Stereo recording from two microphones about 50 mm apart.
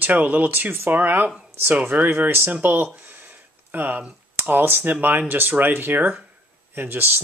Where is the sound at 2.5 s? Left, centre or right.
Right.